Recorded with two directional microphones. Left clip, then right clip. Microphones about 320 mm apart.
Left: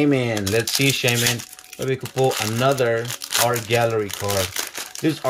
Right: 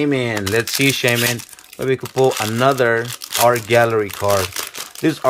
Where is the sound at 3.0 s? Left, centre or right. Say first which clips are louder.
Right 1 dB; centre.